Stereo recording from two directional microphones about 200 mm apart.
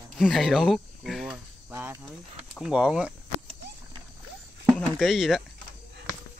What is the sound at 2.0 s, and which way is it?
Speech, centre (ahead or behind).